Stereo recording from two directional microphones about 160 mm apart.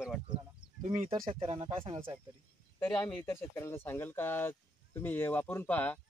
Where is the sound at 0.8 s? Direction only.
40° right (ahead or behind).